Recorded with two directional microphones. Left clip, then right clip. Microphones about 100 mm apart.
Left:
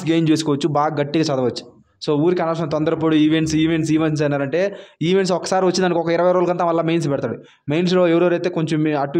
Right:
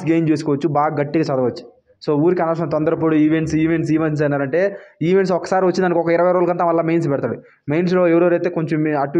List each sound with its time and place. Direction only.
0.2 s a man's voice: 35° left (ahead or behind)
2.3 s a man's voice: 15° left (ahead or behind); by 9.0 s 40° left (ahead or behind)